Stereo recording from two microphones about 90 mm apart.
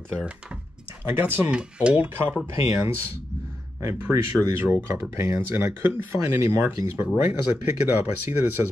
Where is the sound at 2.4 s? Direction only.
30° right (ahead or behind).